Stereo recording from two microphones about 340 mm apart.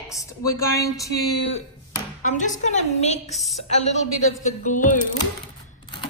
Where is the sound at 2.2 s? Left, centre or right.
Left.